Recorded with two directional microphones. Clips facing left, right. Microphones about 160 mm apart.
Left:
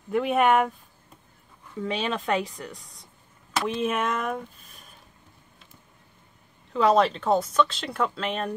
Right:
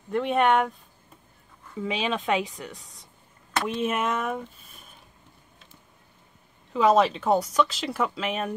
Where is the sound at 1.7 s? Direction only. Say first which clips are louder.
Even; 5° right (ahead or behind).